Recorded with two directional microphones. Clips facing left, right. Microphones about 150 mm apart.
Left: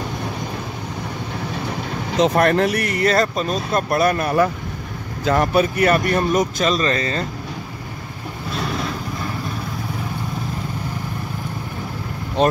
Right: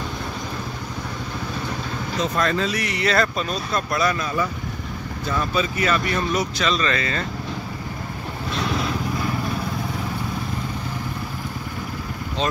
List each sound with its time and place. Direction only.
2.1 s speech: 70° left (ahead or behind); by 7.2 s 35° left (ahead or behind)
12.4 s speech: 55° left (ahead or behind)